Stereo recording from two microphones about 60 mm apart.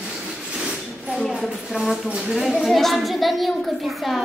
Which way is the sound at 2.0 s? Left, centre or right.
Centre.